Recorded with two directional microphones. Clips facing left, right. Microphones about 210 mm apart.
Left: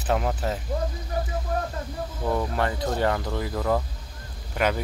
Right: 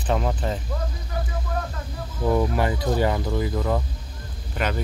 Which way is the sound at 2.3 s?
10° right (ahead or behind).